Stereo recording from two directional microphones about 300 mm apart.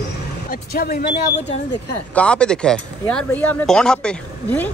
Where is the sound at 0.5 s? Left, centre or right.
Left.